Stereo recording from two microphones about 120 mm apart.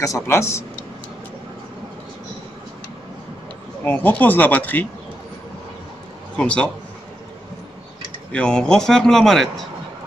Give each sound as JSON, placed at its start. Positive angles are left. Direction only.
{"t": 0.0, "sound": "a man's voice", "side_deg": 25}
{"t": 3.8, "sound": "speech", "side_deg": 15}
{"t": 6.3, "sound": "speech", "side_deg": 10}
{"t": 8.3, "sound": "a man's voice", "side_deg": 10}